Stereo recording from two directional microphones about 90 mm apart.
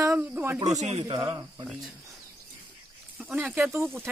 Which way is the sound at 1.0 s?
65° right (ahead or behind).